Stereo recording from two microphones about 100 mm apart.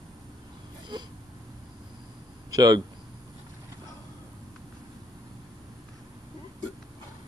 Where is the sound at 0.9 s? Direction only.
45° right (ahead or behind).